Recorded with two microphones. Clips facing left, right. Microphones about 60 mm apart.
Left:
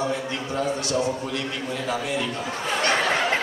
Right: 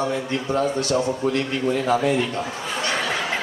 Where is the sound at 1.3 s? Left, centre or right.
Right.